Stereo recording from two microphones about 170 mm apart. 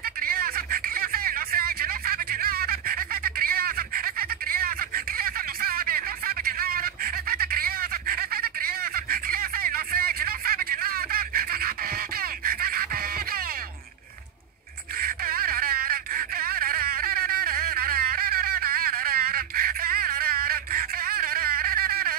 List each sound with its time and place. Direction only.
0.2 s a sound: 60° right (ahead or behind)
12.2 s music: 60° right (ahead or behind)
15.0 s wail: 60° right (ahead or behind)